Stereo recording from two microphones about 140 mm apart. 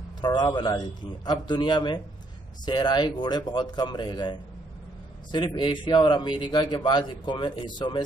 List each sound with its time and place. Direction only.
0.2 s a man's voice: 35° left (ahead or behind)